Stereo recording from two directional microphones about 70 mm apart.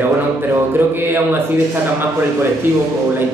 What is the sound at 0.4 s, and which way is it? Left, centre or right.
Speech, right.